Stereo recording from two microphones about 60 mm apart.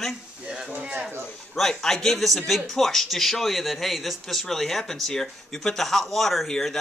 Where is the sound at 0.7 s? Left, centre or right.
Right.